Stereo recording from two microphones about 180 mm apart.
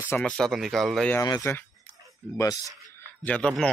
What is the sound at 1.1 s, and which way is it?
Speech, 20° left (ahead or behind).